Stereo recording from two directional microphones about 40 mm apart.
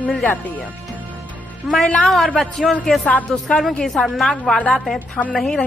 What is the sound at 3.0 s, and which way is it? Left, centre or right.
Speech, left.